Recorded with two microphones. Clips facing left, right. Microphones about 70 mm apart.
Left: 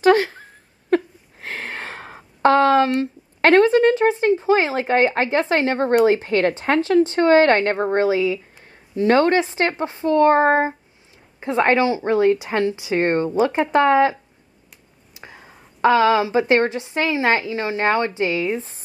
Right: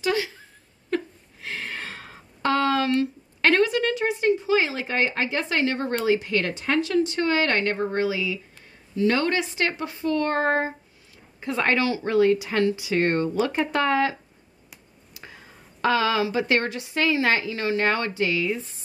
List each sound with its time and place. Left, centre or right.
0.0 s a sound: left
3.0 s a woman's voice: left
15.1 s a woman's voice: left